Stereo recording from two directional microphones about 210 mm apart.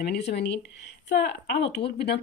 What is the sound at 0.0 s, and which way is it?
Speech, 50° left (ahead or behind).